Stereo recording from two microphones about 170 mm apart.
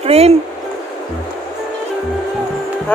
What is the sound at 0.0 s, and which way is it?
Speech, 35° right (ahead or behind).